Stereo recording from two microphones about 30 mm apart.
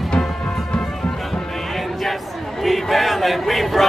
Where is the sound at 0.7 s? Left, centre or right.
Left.